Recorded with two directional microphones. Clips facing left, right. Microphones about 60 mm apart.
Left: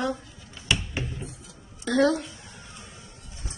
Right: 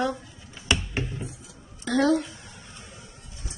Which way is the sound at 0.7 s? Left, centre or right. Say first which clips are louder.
Right 1 dB; right.